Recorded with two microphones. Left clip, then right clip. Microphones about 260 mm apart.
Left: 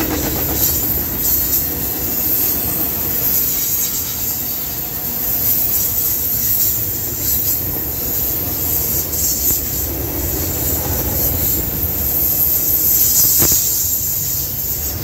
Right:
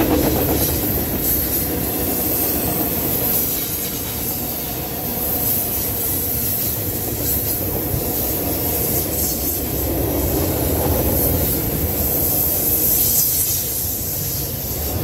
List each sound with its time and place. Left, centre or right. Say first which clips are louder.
0.0 s train: right 4 dB; left